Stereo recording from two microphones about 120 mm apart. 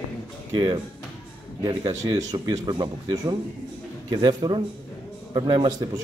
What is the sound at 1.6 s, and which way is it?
Speech, 30° right (ahead or behind).